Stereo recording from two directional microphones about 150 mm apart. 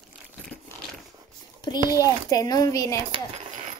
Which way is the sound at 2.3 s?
25° left (ahead or behind).